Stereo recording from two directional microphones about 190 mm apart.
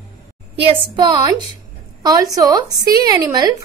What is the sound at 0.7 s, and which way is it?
A woman's voice, 25° right (ahead or behind).